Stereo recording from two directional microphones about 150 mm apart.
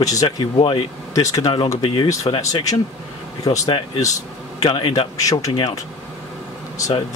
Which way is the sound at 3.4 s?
40° left (ahead or behind).